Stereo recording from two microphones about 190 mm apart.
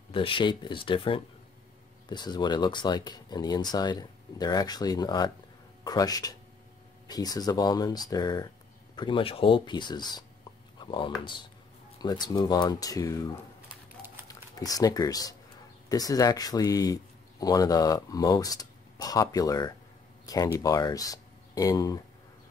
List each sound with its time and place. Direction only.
0.1 s speech: 25° left (ahead or behind)
10.8 s a sound: 25° left (ahead or behind)
12.0 s speech: 20° left (ahead or behind)